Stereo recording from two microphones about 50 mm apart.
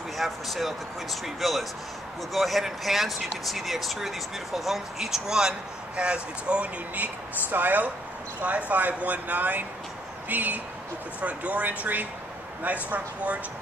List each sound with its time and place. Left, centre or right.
0.2 s speech: centre; by 6.7 s right
7.0 s speech: right